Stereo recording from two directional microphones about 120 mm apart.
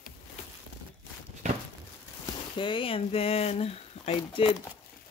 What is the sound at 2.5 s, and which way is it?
Speech, 45° left (ahead or behind).